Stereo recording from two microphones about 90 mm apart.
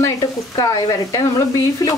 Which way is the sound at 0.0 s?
40° left (ahead or behind).